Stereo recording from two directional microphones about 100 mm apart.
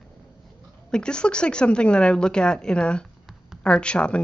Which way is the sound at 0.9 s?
10° left (ahead or behind).